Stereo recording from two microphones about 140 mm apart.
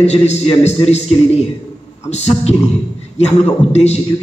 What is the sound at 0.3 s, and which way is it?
A man's voice, 50° left (ahead or behind).